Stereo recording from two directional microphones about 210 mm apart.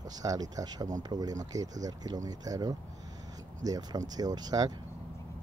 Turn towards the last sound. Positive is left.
turn(degrees=-20)  # may be behind; listen again after turning